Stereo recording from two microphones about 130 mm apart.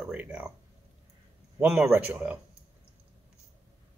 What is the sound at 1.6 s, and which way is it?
Speech, 5° right (ahead or behind).